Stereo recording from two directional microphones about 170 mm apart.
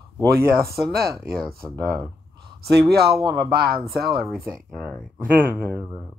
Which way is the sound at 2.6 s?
75° right (ahead or behind).